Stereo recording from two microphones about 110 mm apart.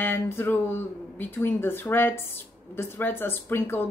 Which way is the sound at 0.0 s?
20° left (ahead or behind).